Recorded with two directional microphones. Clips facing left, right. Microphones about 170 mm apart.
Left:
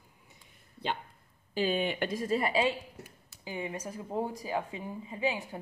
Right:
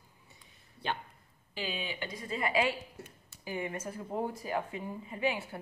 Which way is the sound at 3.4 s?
15° left (ahead or behind).